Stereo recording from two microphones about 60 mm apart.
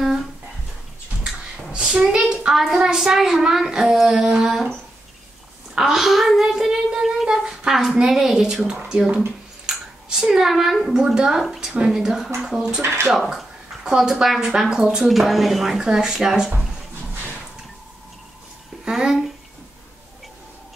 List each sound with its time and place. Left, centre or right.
1.2 s a sound: centre
2.0 s a child's voice: centre
5.8 s a child's voice: centre
12.8 s speech: right
13.1 s speech: centre
15.0 s speech: centre
18.9 s speech: centre